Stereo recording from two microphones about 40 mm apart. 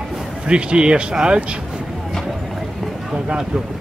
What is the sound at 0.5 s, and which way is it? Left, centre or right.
Speech, right.